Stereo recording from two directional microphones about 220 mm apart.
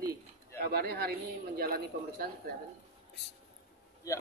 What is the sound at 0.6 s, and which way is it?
Speech, 45° right (ahead or behind).